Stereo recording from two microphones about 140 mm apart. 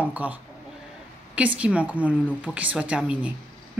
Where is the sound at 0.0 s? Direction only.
10° right (ahead or behind).